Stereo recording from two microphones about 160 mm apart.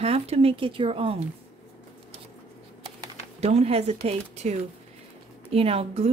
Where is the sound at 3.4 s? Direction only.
40° right (ahead or behind).